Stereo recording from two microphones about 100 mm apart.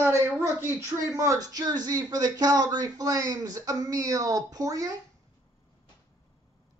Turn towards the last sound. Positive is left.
turn(degrees=-35)  # may be behind; listen again after turning